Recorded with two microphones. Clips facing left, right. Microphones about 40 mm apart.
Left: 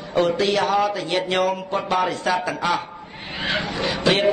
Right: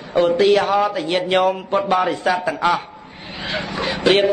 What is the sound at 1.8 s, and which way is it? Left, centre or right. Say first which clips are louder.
Speech: right 2 dB; centre.